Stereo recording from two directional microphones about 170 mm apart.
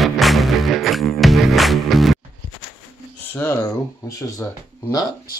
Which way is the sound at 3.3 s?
15° left (ahead or behind).